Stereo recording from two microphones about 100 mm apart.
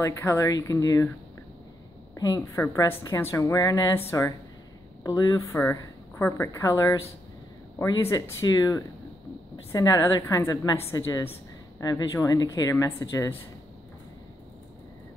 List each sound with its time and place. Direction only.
0.0 s speech: 25° left (ahead or behind)
2.1 s speech: 40° left (ahead or behind)
2.5 s a woman's voice: 30° left (ahead or behind)